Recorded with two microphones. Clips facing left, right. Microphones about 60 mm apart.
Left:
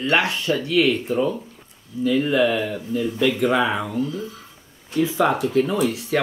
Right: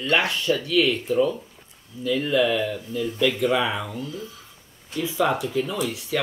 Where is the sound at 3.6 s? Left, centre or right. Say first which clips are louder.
Left 4 dB; left.